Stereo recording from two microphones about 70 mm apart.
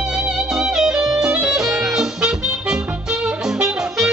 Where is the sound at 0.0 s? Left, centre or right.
Centre.